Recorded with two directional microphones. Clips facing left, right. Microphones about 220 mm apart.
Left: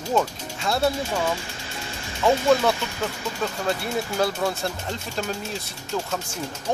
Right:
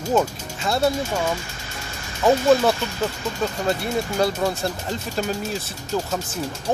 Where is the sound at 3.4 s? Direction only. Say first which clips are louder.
Right 3 dB; centre (ahead or behind).